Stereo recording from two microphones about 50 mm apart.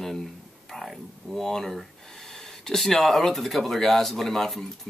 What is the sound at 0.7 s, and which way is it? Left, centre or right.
Speech, centre.